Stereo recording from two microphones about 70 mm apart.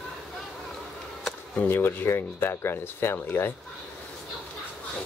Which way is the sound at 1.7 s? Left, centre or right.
Left.